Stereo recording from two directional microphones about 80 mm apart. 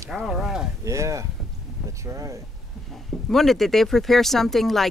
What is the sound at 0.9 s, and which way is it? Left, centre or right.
Speech, right.